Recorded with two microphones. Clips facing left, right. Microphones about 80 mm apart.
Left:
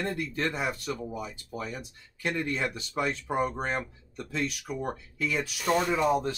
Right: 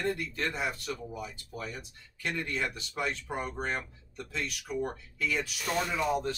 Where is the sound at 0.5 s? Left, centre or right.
Centre.